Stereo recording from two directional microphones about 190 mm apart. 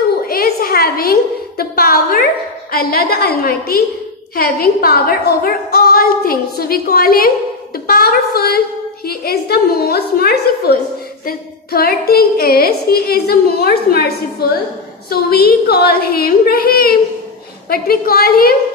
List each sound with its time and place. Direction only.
0.3 s a sound: 50° left (ahead or behind)
1.6 s female singing: 50° left (ahead or behind)
4.4 s a woman's voice: 50° left (ahead or behind)
11.2 s female singing: 50° left (ahead or behind)